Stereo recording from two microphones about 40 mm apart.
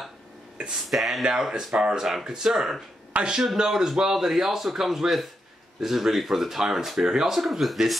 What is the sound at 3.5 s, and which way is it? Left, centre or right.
Speech, centre.